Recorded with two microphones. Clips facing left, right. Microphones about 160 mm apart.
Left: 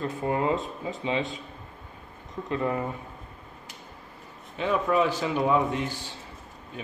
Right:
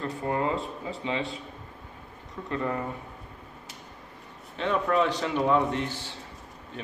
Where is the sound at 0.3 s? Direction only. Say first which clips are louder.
Left 2 dB; 20° left (ahead or behind).